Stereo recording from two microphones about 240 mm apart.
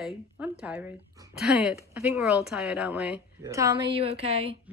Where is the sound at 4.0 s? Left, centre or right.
Right.